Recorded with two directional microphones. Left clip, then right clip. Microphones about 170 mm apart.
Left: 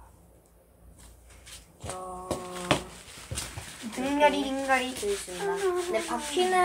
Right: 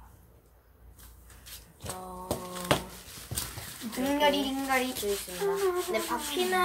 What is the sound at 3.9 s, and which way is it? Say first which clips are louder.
Speech: left 2 dB; 5° right (ahead or behind).